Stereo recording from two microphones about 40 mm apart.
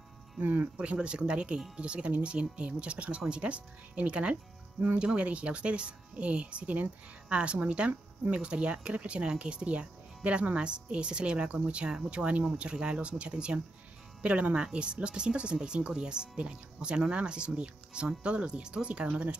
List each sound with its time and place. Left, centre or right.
0.4 s speech: right
0.7 s speech: right